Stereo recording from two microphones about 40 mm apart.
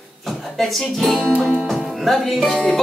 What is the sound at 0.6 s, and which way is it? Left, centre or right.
Music, centre.